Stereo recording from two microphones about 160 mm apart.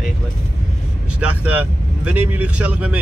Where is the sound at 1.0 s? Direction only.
10° right (ahead or behind).